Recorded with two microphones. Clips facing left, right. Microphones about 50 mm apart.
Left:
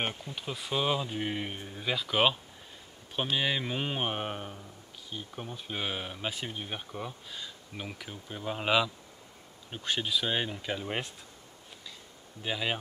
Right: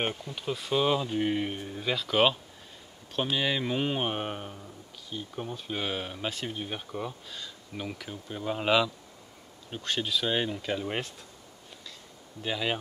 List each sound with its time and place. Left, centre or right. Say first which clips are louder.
0.0 s speech: right 3 dB; centre
7.2 s speech: right 1 dB; centre
12.4 s speech: right 2 dB; centre